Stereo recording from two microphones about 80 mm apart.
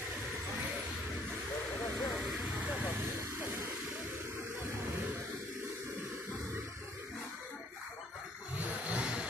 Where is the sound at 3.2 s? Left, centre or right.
Right.